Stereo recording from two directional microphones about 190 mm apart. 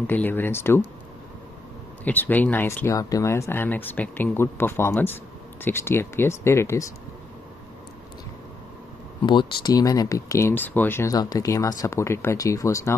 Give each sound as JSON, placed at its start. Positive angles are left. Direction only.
{"t": 0.0, "sound": "speech", "side_deg": 10}
{"t": 2.0, "sound": "speech", "side_deg": 10}
{"t": 9.2, "sound": "speech", "side_deg": 25}